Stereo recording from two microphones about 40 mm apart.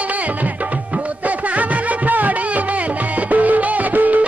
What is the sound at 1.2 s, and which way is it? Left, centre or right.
Music, right.